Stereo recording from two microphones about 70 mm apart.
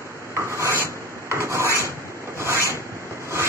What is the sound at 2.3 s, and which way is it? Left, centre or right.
Zipper, right.